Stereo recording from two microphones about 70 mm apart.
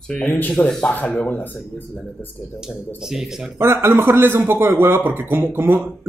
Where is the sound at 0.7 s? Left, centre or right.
Centre.